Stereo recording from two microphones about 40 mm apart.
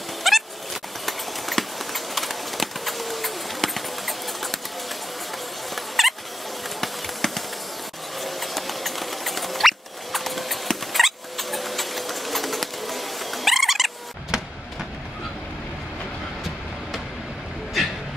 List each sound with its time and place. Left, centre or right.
0.3 s a sound: centre
1.0 s horse: centre
5.8 s turkey: centre
6.8 s a sound: centre
8.2 s rodents: centre
14.3 s vehicle: right